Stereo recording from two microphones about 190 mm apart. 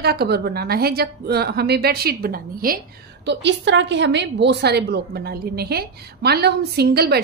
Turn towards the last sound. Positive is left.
turn(degrees=-55)  # may be behind; listen again after turning